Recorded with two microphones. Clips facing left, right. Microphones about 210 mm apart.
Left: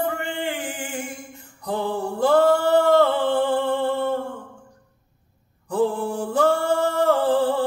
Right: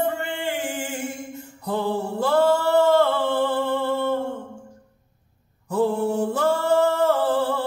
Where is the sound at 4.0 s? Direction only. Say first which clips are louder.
Right 1 dB; 25° right (ahead or behind).